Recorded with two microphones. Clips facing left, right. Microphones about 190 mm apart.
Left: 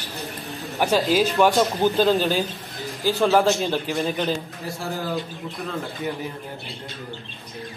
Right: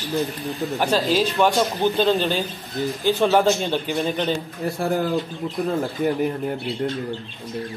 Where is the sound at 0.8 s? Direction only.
10° left (ahead or behind).